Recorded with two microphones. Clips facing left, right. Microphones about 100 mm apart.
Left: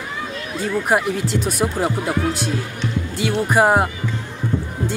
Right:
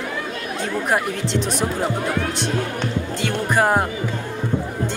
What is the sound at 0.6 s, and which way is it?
Speech, 5° left (ahead or behind).